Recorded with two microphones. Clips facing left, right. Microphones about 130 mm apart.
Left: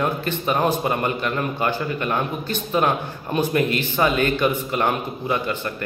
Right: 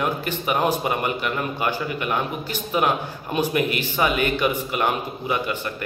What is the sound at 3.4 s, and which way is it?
Speech, 15° right (ahead or behind).